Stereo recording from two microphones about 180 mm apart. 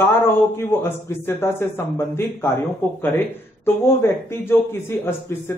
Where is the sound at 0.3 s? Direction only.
10° left (ahead or behind).